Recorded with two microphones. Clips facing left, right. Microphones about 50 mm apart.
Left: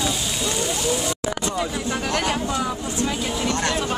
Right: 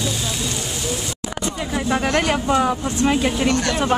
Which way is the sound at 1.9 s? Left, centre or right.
Right.